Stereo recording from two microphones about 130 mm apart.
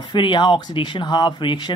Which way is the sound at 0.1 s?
40° left (ahead or behind).